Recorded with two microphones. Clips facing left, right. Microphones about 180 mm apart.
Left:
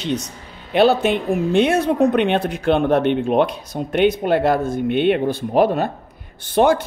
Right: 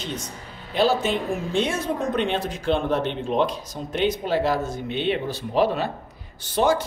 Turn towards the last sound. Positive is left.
turn(degrees=60)  # may be behind; listen again after turning